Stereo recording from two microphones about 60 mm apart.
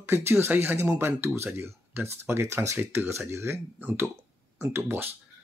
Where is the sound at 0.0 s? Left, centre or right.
Right.